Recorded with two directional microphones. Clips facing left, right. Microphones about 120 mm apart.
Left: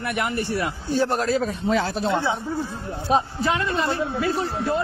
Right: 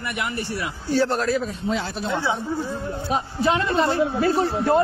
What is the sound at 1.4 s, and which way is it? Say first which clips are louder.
Speech: left 3 dB; 50° left (ahead or behind).